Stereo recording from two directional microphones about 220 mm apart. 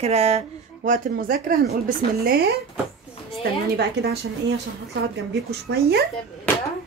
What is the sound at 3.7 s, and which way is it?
Speech, 50° right (ahead or behind).